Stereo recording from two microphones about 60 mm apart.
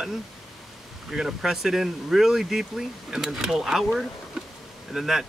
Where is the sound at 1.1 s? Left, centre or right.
Centre.